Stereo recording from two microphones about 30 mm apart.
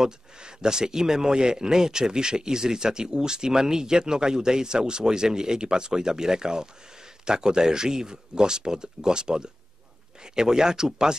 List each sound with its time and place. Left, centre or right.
0.0 s a man's voice: right